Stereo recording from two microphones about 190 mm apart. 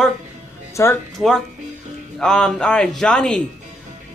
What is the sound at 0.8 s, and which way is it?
Music, 15° left (ahead or behind).